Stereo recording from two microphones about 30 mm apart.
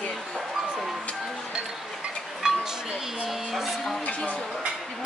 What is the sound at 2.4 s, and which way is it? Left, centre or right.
Chink, centre.